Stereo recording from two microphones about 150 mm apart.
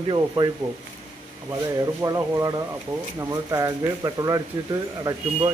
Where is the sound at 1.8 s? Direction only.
25° right (ahead or behind).